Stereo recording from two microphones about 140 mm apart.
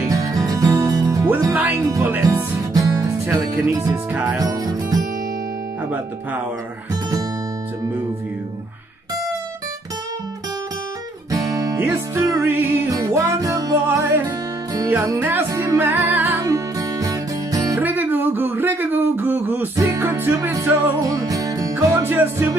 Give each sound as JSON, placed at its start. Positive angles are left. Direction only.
{"t": 0.1, "sound": "music", "side_deg": -25}
{"t": 1.2, "sound": "music", "side_deg": -15}
{"t": 2.7, "sound": "music", "side_deg": -25}
{"t": 3.9, "sound": "speech", "side_deg": -10}
{"t": 4.4, "sound": "music", "side_deg": -25}
{"t": 11.3, "sound": "music", "side_deg": -25}
{"t": 14.2, "sound": "music", "side_deg": -30}
{"t": 14.9, "sound": "music", "side_deg": -15}
{"t": 16.4, "sound": "music", "side_deg": -25}
{"t": 17.7, "sound": "music", "side_deg": -10}
{"t": 19.9, "sound": "music", "side_deg": -25}